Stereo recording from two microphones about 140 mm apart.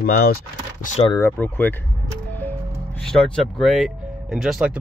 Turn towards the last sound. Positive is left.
turn(degrees=-5)  # may be behind; listen again after turning